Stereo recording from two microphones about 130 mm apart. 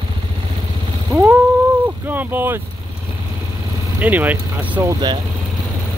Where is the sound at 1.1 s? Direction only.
20° right (ahead or behind).